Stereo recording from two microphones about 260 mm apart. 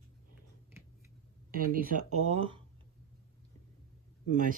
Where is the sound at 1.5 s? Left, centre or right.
Right.